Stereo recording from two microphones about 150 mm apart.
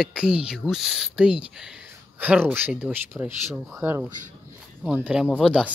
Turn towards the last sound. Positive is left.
turn(degrees=-5)  # may be behind; listen again after turning